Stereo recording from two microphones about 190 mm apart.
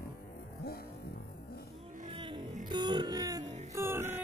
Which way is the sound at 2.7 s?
25° right (ahead or behind).